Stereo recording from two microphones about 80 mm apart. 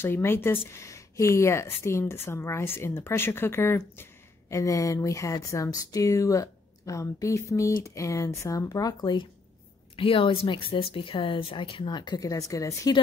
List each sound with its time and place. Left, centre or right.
0.0 s speech: left
4.6 s speech: left
9.0 s speech: left
9.9 s a woman's voice: left